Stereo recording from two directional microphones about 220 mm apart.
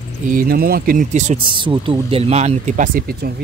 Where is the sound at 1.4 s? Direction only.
20° right (ahead or behind).